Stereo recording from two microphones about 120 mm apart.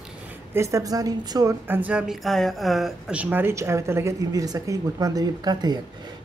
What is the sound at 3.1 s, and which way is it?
Speech, 15° right (ahead or behind).